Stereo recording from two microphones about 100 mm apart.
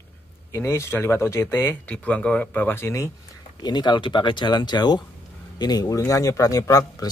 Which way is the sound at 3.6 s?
50° left (ahead or behind).